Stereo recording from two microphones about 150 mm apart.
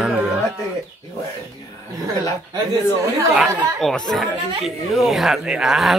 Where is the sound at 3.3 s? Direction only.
Centre (ahead or behind).